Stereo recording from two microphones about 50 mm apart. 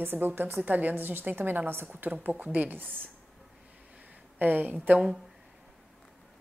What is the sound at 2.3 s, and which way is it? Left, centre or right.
Speech, right.